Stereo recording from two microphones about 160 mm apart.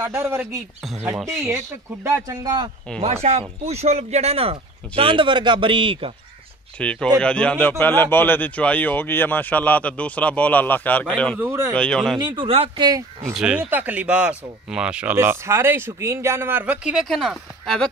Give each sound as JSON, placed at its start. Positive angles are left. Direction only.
{"t": 0.0, "sound": "speech", "side_deg": -15}
{"t": 1.1, "sound": "speech", "side_deg": 0}
{"t": 2.0, "sound": "speech", "side_deg": -20}
{"t": 3.0, "sound": "speech", "side_deg": -40}
{"t": 6.8, "sound": "a man's voice", "side_deg": 5}
{"t": 11.3, "sound": "speech", "side_deg": -15}
{"t": 11.7, "sound": "speech", "side_deg": 5}
{"t": 12.2, "sound": "speech", "side_deg": -30}
{"t": 13.4, "sound": "speech", "side_deg": -10}